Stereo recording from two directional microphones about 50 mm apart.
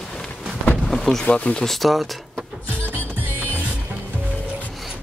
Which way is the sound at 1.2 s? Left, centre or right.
Left.